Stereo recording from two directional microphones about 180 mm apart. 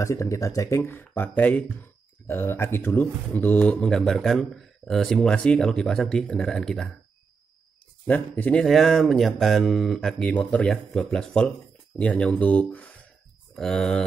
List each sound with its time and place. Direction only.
0.0 s speech: 15° left (ahead or behind)
8.1 s speech: 10° left (ahead or behind)